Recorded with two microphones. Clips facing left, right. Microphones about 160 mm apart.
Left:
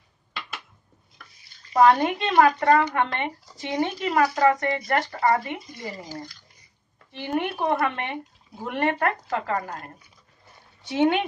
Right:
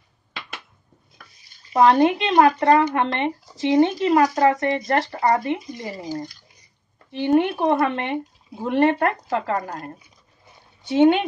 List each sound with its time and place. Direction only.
1.7 s speech: 20° right (ahead or behind)
5.2 s speech: 40° right (ahead or behind)
5.5 s speech: 25° right (ahead or behind)
9.9 s a sound: 10° right (ahead or behind)
10.9 s speech: 25° right (ahead or behind)